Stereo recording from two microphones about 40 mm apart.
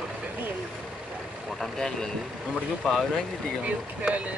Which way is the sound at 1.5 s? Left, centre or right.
Centre.